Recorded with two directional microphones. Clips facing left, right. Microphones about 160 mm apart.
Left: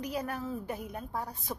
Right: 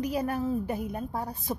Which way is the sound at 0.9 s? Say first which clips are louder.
Right 4 dB; 30° right (ahead or behind).